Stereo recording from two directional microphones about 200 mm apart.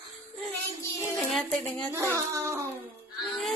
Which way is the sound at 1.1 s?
Centre (ahead or behind).